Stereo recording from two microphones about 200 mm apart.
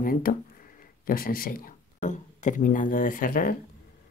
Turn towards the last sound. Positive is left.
turn(degrees=45)  # may be behind; listen again after turning